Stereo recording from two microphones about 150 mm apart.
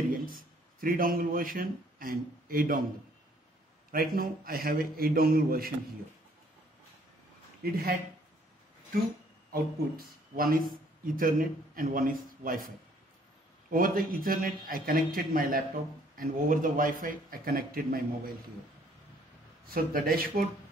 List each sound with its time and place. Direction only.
0.1 s a man's voice: 70° right (ahead or behind)
3.9 s a man's voice: 75° right (ahead or behind)
7.6 s speech: 90° right
9.5 s a man's voice: 75° right (ahead or behind)
19.6 s a man's voice: 75° right (ahead or behind)